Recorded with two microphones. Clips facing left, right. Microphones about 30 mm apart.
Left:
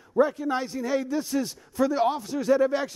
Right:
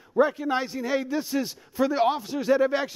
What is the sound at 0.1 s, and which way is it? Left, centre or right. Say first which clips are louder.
A man's voice: right 1 dB; centre.